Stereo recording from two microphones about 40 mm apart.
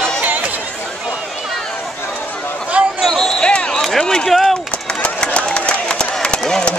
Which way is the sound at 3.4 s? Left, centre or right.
Left.